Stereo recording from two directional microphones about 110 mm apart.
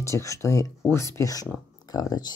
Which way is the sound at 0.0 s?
25° left (ahead or behind).